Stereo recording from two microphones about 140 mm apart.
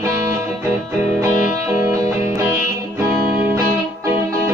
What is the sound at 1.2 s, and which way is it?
Music, 25° right (ahead or behind).